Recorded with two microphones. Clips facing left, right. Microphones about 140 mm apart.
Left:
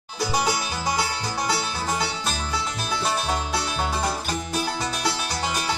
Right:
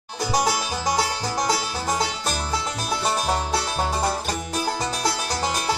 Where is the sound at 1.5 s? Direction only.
40° right (ahead or behind).